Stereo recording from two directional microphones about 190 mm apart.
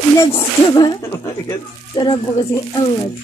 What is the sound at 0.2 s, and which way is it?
Speech, 15° left (ahead or behind).